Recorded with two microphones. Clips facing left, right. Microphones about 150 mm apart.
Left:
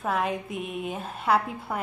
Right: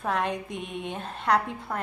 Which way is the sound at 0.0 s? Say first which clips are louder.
Left 1 dB; centre (ahead or behind).